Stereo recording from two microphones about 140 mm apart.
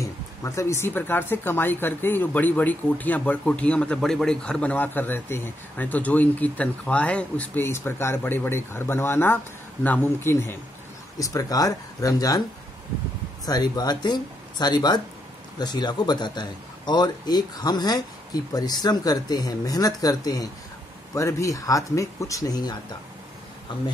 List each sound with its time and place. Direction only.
0.0 s a man's voice: 20° left (ahead or behind)
13.5 s a man's voice: 30° left (ahead or behind)